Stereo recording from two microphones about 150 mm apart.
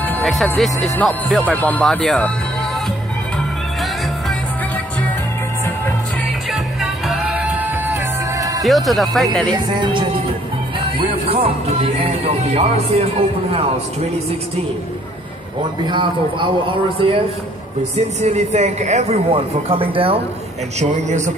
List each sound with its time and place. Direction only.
0.2 s speech: centre (ahead or behind)
6.5 s music: centre (ahead or behind); by 8.6 s 20° right (ahead or behind)
8.6 s speech: centre (ahead or behind)
9.7 s speech: 30° right (ahead or behind)
12.5 s speech: 45° right (ahead or behind)
15.9 s speech: 35° right (ahead or behind)
18.2 s speech: 50° right (ahead or behind)
20.8 s speech: 55° right (ahead or behind)